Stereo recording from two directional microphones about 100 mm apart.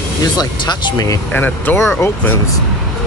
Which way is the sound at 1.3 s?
20° left (ahead or behind).